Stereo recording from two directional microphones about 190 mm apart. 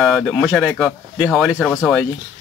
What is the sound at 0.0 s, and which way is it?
Speech, centre (ahead or behind).